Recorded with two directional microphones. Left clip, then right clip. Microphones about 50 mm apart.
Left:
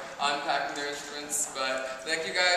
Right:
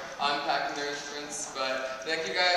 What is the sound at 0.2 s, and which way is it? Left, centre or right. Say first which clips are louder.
A man's voice: even; centre.